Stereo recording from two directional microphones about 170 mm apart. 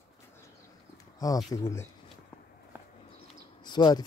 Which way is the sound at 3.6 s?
25° left (ahead or behind).